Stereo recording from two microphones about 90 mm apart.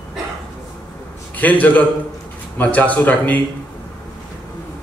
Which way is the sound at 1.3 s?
20° left (ahead or behind).